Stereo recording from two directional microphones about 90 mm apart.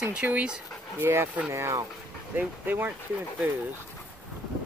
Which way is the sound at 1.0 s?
25° right (ahead or behind).